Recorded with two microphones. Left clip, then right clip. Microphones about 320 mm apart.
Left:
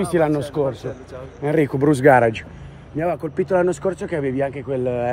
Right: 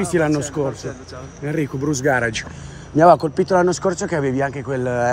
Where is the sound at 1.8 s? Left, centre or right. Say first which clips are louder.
Left 5 dB; centre.